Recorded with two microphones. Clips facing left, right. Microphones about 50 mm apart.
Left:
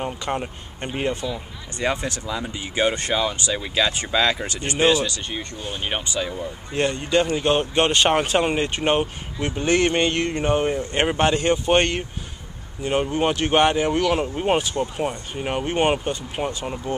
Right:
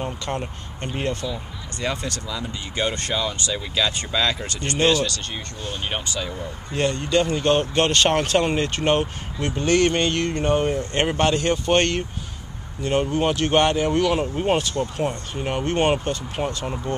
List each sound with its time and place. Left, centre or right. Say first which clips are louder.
0.0 s speech: left 2 dB; centre
2.7 s speech: left 3 dB; centre